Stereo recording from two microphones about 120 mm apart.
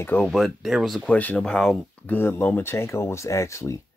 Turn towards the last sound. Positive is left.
turn(degrees=25)  # may be behind; listen again after turning